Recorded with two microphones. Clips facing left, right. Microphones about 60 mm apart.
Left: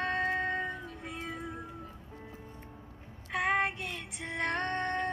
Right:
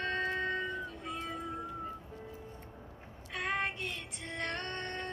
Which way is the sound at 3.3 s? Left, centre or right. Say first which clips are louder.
Left 5 dB; centre.